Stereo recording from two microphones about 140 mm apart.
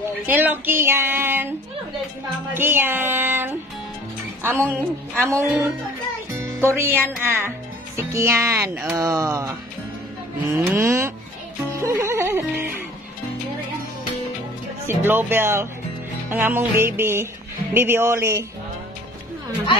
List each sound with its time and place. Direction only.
0.3 s speech: 15° right (ahead or behind)
2.5 s speech: 15° right (ahead or behind)
10.4 s speech: 15° right (ahead or behind)
11.8 s music: 20° right (ahead or behind)
14.9 s speech: 15° right (ahead or behind)